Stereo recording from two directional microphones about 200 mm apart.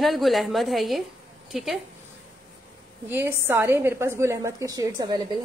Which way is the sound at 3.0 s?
10° right (ahead or behind).